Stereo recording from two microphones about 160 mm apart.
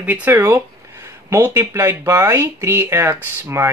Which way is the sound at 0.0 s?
10° right (ahead or behind).